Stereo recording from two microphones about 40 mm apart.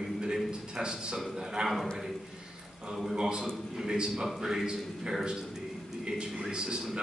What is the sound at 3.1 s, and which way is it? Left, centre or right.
Speech, centre.